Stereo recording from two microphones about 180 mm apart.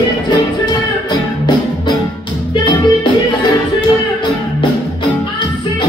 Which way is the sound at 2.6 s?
25° left (ahead or behind).